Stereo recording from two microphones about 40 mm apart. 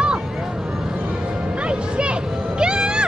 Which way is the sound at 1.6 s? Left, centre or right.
Right.